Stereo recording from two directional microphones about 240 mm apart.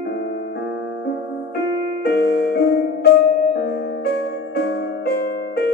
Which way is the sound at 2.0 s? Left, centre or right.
Left.